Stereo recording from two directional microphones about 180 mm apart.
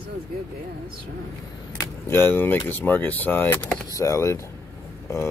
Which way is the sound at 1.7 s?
10° left (ahead or behind).